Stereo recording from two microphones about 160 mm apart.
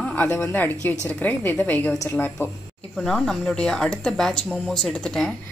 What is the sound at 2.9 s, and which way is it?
Speech, 5° left (ahead or behind).